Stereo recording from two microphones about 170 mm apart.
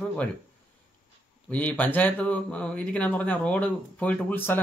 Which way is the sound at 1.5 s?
10° left (ahead or behind).